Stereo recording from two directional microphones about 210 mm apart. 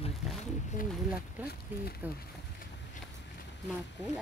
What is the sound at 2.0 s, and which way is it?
Speech, 10° right (ahead or behind).